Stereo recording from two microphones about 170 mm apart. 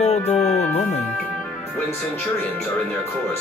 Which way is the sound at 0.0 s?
40° left (ahead or behind).